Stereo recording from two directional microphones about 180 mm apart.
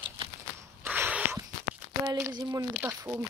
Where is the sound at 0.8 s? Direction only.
10° right (ahead or behind).